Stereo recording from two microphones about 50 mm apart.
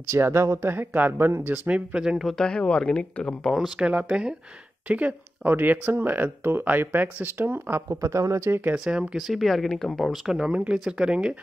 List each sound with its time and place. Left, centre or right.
0.2 s speech: right
0.7 s speech: right
2.0 s speech: centre
2.2 s speech: centre
3.5 s speech: centre
3.8 s speech: right
4.8 s speech: right
5.5 s speech: right
7.9 s speech: right
8.7 s speech: centre
9.1 s speech: centre
10.1 s speech: centre